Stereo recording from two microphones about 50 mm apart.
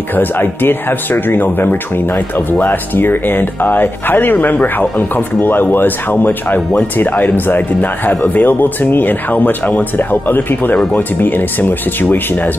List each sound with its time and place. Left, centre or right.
0.1 s speech: left